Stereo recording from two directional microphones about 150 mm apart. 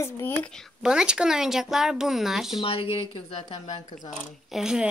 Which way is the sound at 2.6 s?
40° left (ahead or behind).